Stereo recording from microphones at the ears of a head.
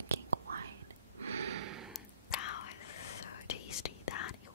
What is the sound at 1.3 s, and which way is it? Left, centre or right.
Gasp, right.